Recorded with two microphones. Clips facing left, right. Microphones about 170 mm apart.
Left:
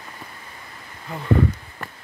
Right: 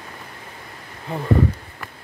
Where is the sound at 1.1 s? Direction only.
30° right (ahead or behind).